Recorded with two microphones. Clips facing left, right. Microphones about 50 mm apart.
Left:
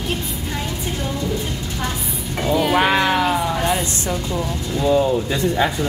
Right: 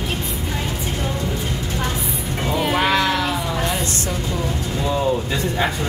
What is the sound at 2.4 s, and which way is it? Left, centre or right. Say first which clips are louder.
Speech: left 3 dB; centre.